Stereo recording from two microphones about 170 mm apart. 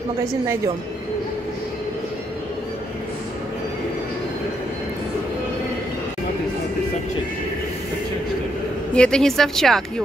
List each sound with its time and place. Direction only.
0.2 s a woman's voice: 15° right (ahead or behind)
8.9 s speech: 5° left (ahead or behind)